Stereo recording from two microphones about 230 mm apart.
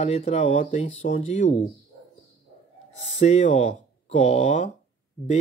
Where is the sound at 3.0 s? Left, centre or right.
Left.